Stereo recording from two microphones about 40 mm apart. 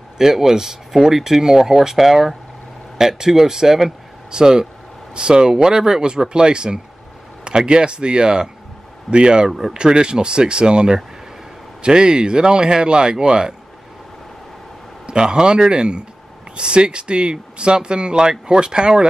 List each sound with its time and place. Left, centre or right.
0.2 s speech: centre
9.5 s speech: centre
9.8 s speech: centre
15.0 s speech: centre